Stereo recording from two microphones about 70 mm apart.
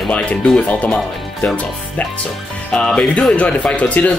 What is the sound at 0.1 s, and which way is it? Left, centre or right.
Speech, centre.